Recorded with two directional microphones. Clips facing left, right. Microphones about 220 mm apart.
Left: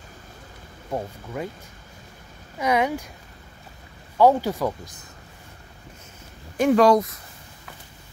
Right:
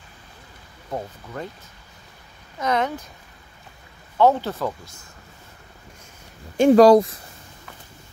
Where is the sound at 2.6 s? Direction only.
10° left (ahead or behind).